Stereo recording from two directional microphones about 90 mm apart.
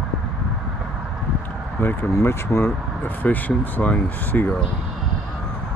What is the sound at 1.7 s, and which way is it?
Speech, 20° left (ahead or behind).